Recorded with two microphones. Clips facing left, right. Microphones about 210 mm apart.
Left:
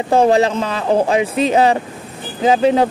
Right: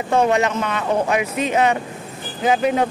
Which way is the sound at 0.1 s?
30° left (ahead or behind).